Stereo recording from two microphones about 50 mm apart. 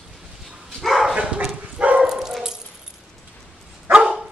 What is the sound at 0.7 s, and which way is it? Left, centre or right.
Dog, centre.